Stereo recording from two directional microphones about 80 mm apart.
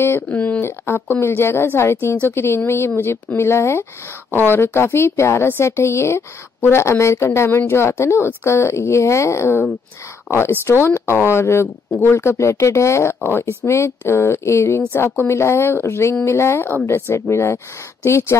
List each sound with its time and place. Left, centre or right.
0.0 s a woman's voice: left